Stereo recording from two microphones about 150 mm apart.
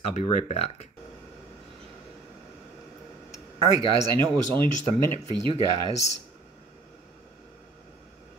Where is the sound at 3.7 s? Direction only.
25° right (ahead or behind).